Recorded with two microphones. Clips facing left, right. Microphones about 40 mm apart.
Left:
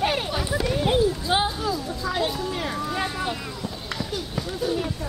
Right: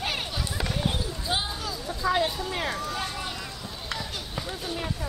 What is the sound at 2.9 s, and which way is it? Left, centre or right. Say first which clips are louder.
Speech: left 5 dB; centre.